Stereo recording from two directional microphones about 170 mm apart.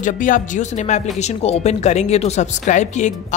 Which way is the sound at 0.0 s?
50° left (ahead or behind).